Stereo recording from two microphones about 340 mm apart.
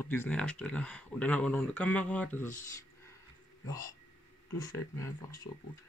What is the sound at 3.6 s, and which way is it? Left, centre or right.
Speech, centre.